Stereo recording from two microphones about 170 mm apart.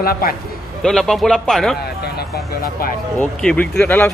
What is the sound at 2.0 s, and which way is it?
Speech, 70° left (ahead or behind).